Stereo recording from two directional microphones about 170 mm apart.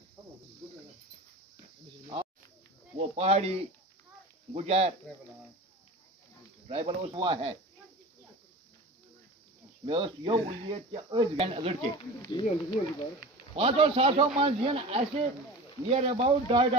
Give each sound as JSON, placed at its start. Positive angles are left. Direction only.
{"t": 3.0, "sound": "a man's voice", "side_deg": -35}
{"t": 4.6, "sound": "a man's voice", "side_deg": -40}
{"t": 6.7, "sound": "a man's voice", "side_deg": -35}
{"t": 9.8, "sound": "a man's voice", "side_deg": -30}
{"t": 12.2, "sound": "speech", "side_deg": 25}
{"t": 13.6, "sound": "a man's voice", "side_deg": -35}